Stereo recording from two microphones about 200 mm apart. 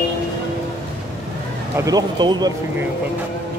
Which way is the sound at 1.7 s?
15° right (ahead or behind).